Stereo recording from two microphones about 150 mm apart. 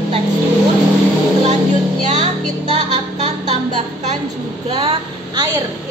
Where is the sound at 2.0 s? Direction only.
55° right (ahead or behind).